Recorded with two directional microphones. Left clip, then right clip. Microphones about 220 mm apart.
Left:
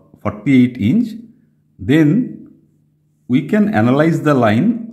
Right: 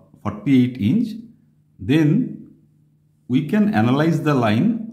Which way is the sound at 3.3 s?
25° left (ahead or behind).